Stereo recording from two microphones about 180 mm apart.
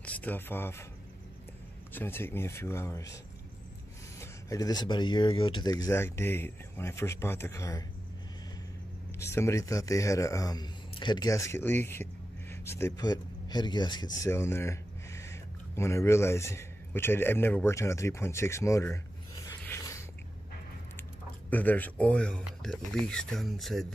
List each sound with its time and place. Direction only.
0.0 s speech: 10° left (ahead or behind)
1.9 s speech: 10° left (ahead or behind)
4.2 s speech: 20° left (ahead or behind)
9.2 s speech: 15° left (ahead or behind)
19.6 s a sound: 15° left (ahead or behind)
21.5 s speech: 10° left (ahead or behind)